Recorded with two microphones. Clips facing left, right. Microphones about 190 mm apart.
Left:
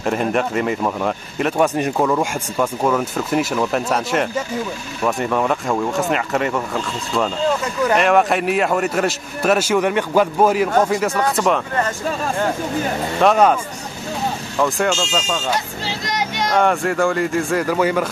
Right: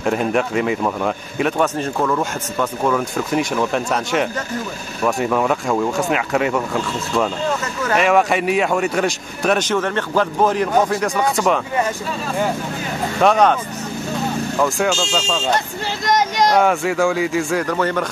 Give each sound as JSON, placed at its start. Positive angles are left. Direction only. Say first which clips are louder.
{"t": 0.0, "sound": "a man's voice", "louder": "right 1 dB", "side_deg": 0}
{"t": 1.6, "sound": "a man's voice", "louder": "left 6 dB", "side_deg": 15}
{"t": 13.2, "sound": "a man's voice", "louder": "even", "side_deg": 0}
{"t": 14.6, "sound": "a man's voice", "louder": "left 1 dB", "side_deg": 0}
{"t": 16.1, "sound": "a sound", "louder": "right 7 dB", "side_deg": -40}
{"t": 16.5, "sound": "a man's voice", "louder": "left 2 dB", "side_deg": 0}